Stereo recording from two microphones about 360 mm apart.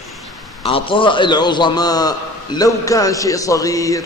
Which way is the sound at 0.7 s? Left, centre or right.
Centre.